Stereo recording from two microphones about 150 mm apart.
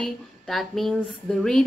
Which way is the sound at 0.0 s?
Centre (ahead or behind).